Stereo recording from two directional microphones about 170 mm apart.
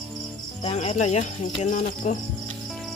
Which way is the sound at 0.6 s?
40° left (ahead or behind).